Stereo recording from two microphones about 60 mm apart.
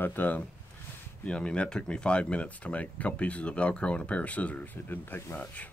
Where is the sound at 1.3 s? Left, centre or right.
Centre.